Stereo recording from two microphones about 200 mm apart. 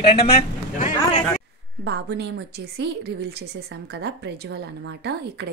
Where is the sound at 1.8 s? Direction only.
60° right (ahead or behind).